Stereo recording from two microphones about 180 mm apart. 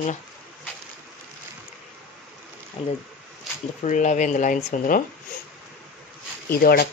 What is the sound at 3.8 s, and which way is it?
Speech, 40° left (ahead or behind).